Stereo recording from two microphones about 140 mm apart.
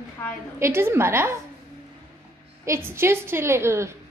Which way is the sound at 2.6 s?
20° right (ahead or behind).